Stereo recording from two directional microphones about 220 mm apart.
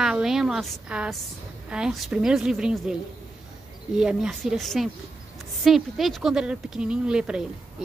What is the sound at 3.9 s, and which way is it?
Speech, 5° right (ahead or behind).